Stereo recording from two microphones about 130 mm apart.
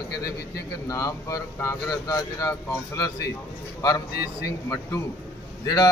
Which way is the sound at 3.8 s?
25° left (ahead or behind).